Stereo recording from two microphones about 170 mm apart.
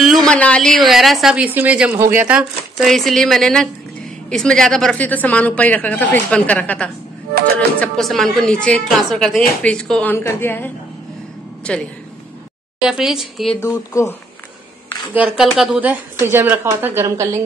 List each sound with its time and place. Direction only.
0.0 s a woman's voice: centre (ahead or behind)
12.8 s a woman's voice: 5° right (ahead or behind)
13.6 s a woman's voice: 15° left (ahead or behind)
15.1 s a woman's voice: 5° right (ahead or behind)